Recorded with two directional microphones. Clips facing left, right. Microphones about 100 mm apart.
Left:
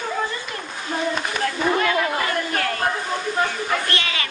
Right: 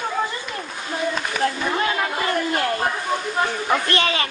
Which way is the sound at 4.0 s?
30° right (ahead or behind).